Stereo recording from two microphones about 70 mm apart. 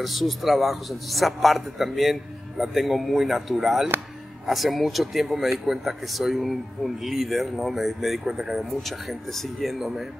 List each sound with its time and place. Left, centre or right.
0.0 s speech: centre